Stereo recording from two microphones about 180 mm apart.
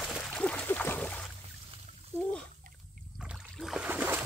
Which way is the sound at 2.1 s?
15° right (ahead or behind).